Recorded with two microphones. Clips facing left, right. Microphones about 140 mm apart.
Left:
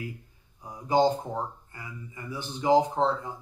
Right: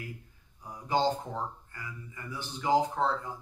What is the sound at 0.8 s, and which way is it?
Speech, 15° left (ahead or behind).